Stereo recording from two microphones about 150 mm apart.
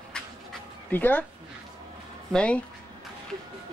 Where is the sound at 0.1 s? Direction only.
10° left (ahead or behind).